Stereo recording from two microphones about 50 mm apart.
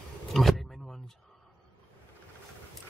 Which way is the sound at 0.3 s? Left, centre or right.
Centre.